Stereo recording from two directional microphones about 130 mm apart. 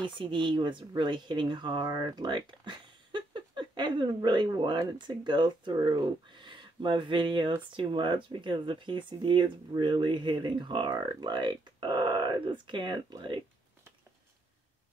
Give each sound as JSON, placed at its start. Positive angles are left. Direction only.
{"t": 0.0, "sound": "speech", "side_deg": -40}